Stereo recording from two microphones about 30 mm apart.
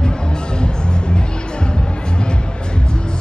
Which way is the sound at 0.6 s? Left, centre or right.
Left.